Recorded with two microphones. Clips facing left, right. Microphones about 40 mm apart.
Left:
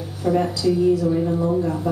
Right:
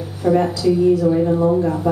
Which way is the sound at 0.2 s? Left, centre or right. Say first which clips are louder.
Right 4 dB; centre.